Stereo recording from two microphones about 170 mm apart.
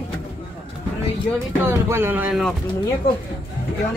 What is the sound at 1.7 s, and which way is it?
Speech, 15° right (ahead or behind).